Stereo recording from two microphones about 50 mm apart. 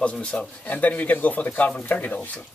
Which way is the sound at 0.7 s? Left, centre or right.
Left.